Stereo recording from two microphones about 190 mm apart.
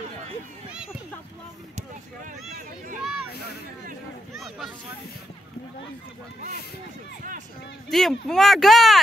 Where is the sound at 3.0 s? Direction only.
5° right (ahead or behind).